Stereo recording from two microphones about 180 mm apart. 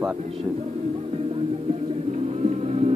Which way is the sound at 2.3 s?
35° right (ahead or behind).